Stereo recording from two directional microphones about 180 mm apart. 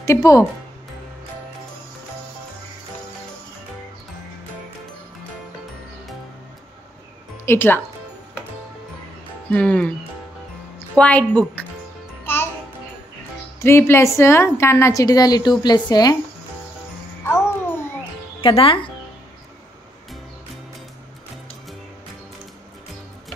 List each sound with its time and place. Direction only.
0.0 s speech: 20° left (ahead or behind)
7.4 s a woman's voice: 10° left (ahead or behind)
9.5 s a woman's voice: 5° left (ahead or behind)
11.0 s a woman's voice: 5° left (ahead or behind)
13.6 s a woman's voice: 15° left (ahead or behind)
17.2 s music: 15° left (ahead or behind)
18.4 s speech: 30° left (ahead or behind)